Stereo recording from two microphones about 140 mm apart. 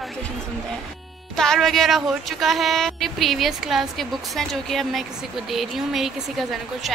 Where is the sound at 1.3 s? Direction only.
5° left (ahead or behind).